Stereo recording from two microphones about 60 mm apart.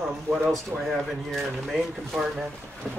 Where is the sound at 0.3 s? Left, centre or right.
Centre.